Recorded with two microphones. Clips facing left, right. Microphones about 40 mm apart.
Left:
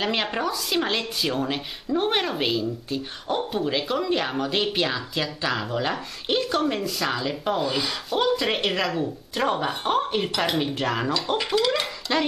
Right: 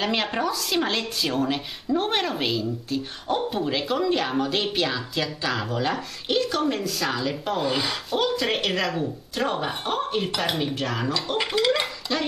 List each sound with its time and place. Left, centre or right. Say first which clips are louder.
0.0 s a woman's voice: even; centre
7.6 s a woman's voice: right 1 dB; centre
8.2 s a woman's voice: left 2 dB; centre
9.8 s speech: left 4 dB; left
10.2 s a woman's voice: left 1 dB; centre
10.8 s speech: left 2 dB; centre
11.1 s a woman's voice: left 1 dB; centre
12.1 s speech: left 4 dB; left